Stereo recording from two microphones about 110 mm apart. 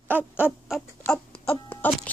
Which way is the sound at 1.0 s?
15° left (ahead or behind).